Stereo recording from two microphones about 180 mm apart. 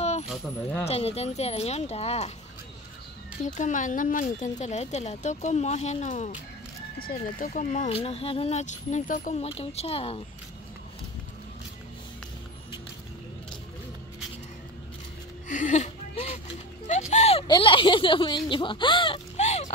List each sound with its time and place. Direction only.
0.0 s coin: 35° left (ahead or behind)
0.8 s speech: 35° left (ahead or behind)
3.4 s speech: 45° left (ahead or behind)
7.0 s speech: 50° left (ahead or behind); by 10.2 s 30° left (ahead or behind)
15.4 s a sound: 45° left (ahead or behind)